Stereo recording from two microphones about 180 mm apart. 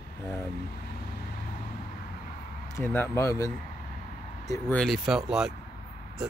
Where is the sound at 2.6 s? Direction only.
15° left (ahead or behind).